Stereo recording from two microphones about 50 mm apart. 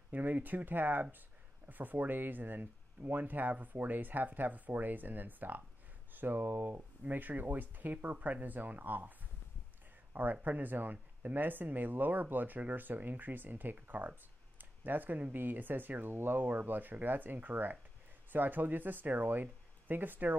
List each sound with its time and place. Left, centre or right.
0.1 s speech: right
10.1 s speech: right
14.6 s a sound: right
15.3 s speech: right